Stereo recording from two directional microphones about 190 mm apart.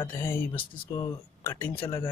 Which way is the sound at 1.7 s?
25° left (ahead or behind).